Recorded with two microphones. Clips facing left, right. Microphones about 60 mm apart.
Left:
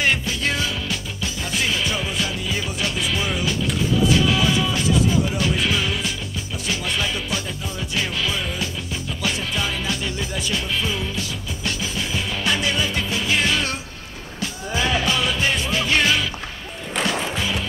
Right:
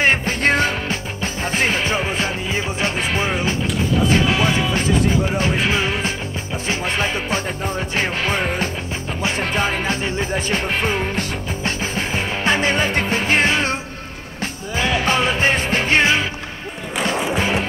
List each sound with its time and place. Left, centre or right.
0.0 s music: right
17.4 s music: right